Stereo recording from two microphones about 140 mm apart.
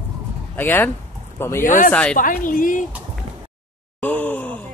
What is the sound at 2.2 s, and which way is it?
Speech, 75° left (ahead or behind).